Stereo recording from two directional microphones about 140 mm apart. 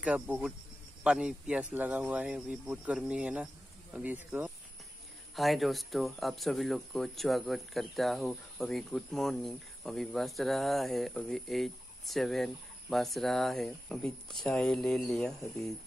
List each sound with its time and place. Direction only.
0.0 s speech: 10° right (ahead or behind)
5.3 s speech: centre (ahead or behind)